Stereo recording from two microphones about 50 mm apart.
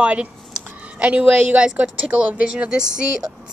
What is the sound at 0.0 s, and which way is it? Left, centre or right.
A woman's voice, right.